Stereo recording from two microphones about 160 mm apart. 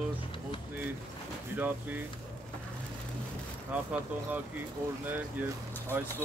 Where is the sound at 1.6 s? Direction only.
10° right (ahead or behind).